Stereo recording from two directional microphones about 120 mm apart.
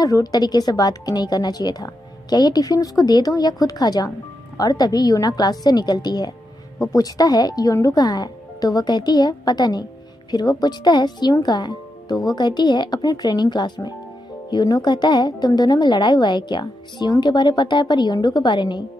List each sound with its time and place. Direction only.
0.0 s a woman's voice: 30° left (ahead or behind)